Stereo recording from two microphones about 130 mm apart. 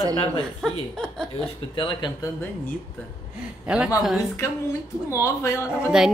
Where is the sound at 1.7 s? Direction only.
35° left (ahead or behind).